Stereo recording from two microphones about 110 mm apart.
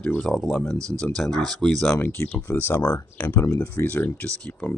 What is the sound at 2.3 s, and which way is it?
Speech, 15° left (ahead or behind).